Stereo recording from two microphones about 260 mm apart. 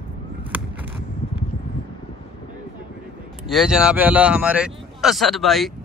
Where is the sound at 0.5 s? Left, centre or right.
Centre.